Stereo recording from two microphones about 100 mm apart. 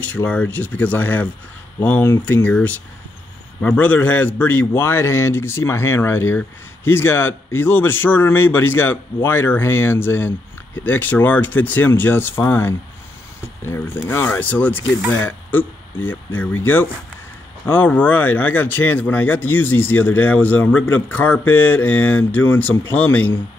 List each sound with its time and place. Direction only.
0.0 s speech: 15° left (ahead or behind)
14.0 s speech: 20° left (ahead or behind)